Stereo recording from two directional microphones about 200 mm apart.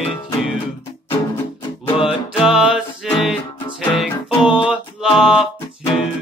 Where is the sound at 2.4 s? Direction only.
5° right (ahead or behind).